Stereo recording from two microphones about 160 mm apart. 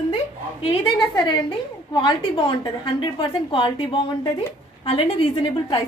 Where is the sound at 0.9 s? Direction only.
30° left (ahead or behind).